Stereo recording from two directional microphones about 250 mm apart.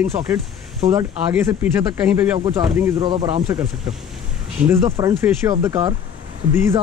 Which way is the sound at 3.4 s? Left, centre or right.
Centre.